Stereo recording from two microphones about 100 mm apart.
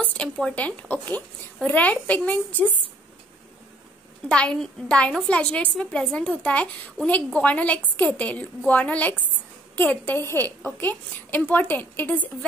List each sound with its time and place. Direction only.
0.0 s a sound: 15° left (ahead or behind)
0.6 s a woman's voice: 15° left (ahead or behind)
4.3 s a woman's voice: 10° left (ahead or behind)